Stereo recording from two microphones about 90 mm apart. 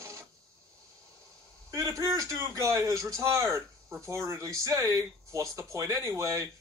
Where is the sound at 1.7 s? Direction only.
35° right (ahead or behind).